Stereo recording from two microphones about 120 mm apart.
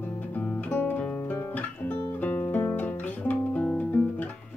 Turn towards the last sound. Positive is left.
turn(degrees=10)  # may be behind; listen again after turning